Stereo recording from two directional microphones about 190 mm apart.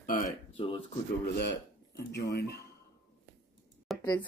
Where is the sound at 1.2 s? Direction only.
60° left (ahead or behind).